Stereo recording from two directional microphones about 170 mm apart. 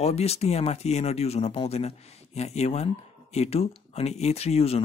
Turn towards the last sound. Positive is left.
turn(degrees=40)  # may be behind; listen again after turning